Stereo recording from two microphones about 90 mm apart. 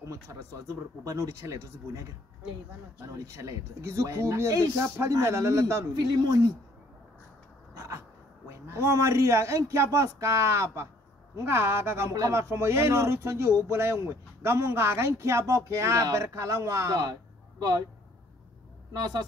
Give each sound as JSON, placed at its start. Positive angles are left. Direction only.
{"t": 0.0, "sound": "speech", "side_deg": -35}
{"t": 7.7, "sound": "a sound", "side_deg": -35}
{"t": 8.5, "sound": "speech", "side_deg": -30}
{"t": 18.9, "sound": "a woman's voice", "side_deg": -50}